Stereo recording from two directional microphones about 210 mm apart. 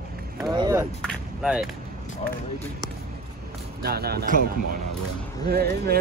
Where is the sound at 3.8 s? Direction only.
50° right (ahead or behind).